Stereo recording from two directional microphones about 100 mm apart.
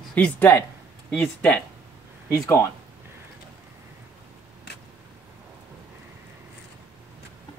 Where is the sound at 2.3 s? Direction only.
30° left (ahead or behind).